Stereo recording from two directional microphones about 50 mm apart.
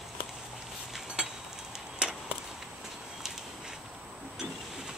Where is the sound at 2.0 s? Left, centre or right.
Centre.